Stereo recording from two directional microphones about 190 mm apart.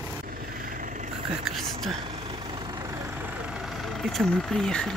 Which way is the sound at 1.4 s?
Centre (ahead or behind).